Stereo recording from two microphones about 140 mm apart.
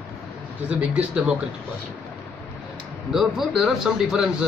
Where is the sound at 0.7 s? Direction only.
5° right (ahead or behind).